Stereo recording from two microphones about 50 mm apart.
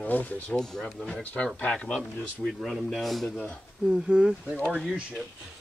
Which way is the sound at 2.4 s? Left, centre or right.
Centre.